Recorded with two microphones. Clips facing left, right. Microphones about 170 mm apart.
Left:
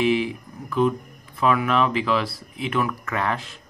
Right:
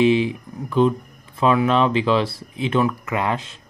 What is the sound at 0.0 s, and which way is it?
Speech, 25° right (ahead or behind).